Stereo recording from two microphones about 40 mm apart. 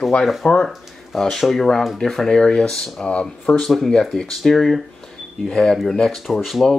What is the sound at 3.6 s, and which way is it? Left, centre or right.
Speech, centre.